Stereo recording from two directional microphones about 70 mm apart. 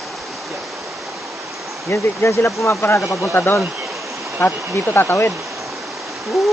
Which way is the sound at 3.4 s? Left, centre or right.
Left.